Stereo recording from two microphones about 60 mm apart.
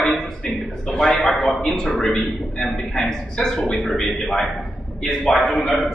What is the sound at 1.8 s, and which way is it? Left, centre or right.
A man's voice, centre.